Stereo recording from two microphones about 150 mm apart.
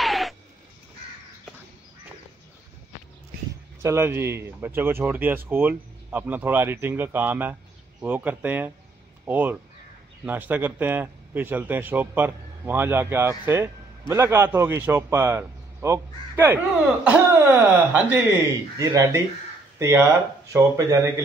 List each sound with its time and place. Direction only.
0.0 s a sound: centre (ahead or behind)
3.8 s a man's voice: 15° right (ahead or behind)
18.8 s speech: 25° right (ahead or behind)